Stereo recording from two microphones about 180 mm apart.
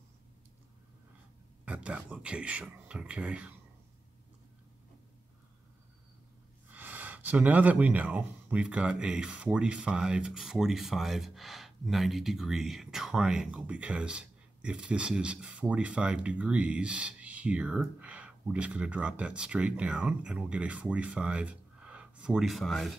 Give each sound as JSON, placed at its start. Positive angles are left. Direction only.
{"t": 1.7, "sound": "speech", "side_deg": -5}
{"t": 6.7, "sound": "speech", "side_deg": -10}